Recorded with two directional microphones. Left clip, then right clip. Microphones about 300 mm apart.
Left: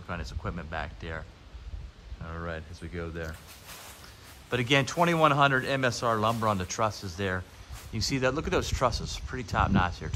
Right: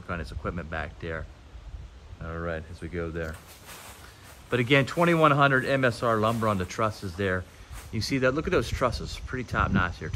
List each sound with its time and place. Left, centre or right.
0.0 s a man's voice: centre
2.2 s speech: centre
4.5 s a man's voice: centre